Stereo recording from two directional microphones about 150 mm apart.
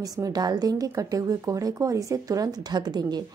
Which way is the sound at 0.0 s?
25° right (ahead or behind).